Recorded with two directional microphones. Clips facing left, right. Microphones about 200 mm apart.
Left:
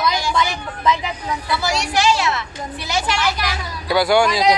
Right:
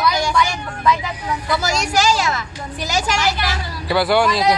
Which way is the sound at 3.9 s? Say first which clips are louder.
Left 1 dB; centre (ahead or behind).